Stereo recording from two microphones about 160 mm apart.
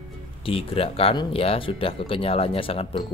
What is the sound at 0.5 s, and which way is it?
Speech, 35° left (ahead or behind).